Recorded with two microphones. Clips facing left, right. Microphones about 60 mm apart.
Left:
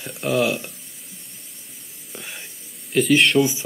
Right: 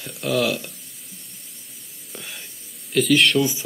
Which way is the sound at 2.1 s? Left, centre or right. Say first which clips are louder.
Left 1 dB; centre.